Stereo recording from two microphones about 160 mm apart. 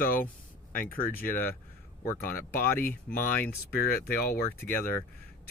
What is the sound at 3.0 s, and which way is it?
Speech, 65° left (ahead or behind).